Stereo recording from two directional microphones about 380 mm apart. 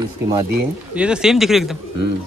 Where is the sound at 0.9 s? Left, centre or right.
Centre.